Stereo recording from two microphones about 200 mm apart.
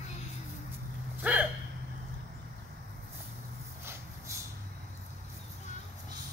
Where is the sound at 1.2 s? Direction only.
5° right (ahead or behind).